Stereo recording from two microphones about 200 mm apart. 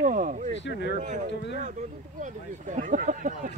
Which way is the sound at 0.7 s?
60° left (ahead or behind).